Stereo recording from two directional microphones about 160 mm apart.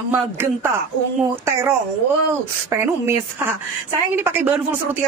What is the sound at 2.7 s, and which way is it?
A man's voice, 15° right (ahead or behind).